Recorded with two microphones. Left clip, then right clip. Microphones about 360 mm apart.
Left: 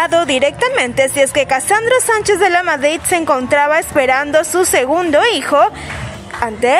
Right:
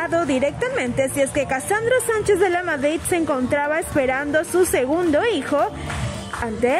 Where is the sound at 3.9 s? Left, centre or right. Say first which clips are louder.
Left 6 dB; left.